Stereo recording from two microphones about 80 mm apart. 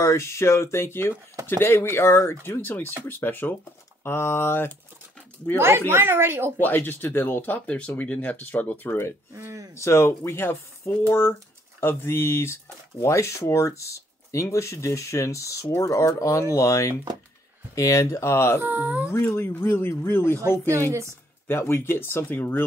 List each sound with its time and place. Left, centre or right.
0.0 s speech: left
5.6 s speech: right
6.6 s speech: left
9.3 s speech: right
9.8 s speech: left
18.6 s speech: right
19.1 s speech: left
21.5 s speech: left